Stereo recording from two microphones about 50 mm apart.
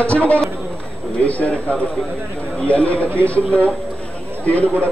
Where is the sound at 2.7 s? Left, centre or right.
Left.